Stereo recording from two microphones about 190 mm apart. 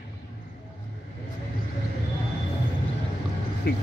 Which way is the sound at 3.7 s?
60° left (ahead or behind).